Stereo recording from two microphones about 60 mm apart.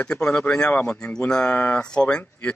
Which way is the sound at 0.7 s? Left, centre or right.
Left.